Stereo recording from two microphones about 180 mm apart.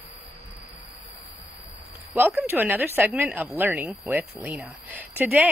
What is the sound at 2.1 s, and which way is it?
A woman's voice, 10° right (ahead or behind).